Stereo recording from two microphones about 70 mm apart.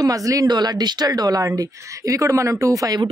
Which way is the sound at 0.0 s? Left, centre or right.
Right.